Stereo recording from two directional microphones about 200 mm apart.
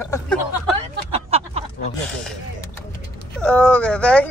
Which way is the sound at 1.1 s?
30° right (ahead or behind).